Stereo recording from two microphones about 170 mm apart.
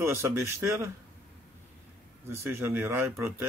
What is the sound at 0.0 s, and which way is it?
Speech, 15° right (ahead or behind).